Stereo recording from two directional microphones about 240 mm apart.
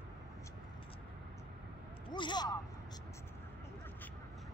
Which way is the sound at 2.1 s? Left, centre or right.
Centre.